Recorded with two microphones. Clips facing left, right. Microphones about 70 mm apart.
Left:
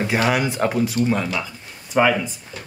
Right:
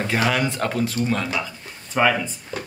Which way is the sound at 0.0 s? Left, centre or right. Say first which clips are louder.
Left 2 dB; centre.